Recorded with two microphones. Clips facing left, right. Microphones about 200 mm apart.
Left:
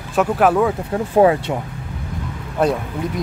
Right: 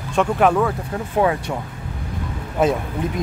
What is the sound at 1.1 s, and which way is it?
Speech, 30° left (ahead or behind).